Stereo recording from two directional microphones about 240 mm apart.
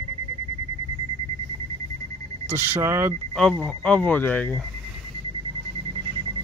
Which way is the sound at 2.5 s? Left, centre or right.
Centre.